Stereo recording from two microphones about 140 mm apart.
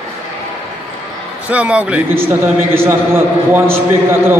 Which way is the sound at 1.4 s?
10° right (ahead or behind).